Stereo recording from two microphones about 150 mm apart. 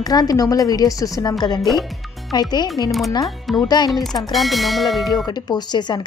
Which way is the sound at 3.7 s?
25° left (ahead or behind).